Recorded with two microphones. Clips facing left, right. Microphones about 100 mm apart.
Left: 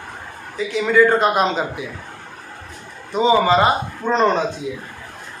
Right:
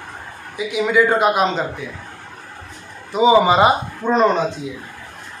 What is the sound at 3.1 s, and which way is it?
A man's voice, 10° right (ahead or behind).